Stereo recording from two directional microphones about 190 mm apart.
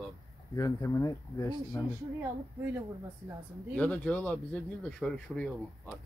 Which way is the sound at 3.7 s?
5° left (ahead or behind).